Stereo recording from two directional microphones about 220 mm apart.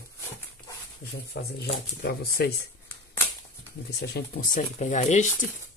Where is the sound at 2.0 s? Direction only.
45° left (ahead or behind).